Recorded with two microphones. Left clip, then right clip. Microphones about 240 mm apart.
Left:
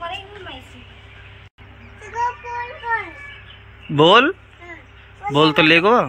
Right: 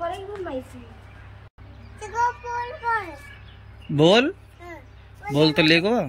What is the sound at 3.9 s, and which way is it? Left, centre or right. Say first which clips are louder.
Speech: left 5 dB; centre.